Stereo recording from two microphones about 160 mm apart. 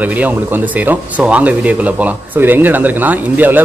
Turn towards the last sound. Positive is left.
turn(degrees=-10)  # may be behind; listen again after turning